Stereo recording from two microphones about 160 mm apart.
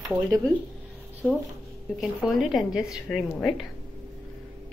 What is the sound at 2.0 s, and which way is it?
A woman's voice, centre (ahead or behind).